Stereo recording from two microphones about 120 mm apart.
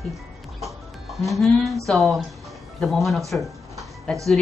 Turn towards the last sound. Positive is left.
turn(degrees=0)  # may be behind; listen again after turning